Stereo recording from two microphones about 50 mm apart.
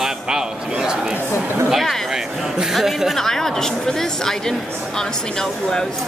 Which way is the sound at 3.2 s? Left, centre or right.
Centre.